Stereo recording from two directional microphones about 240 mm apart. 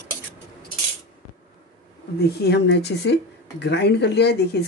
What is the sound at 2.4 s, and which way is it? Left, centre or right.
Speech, left.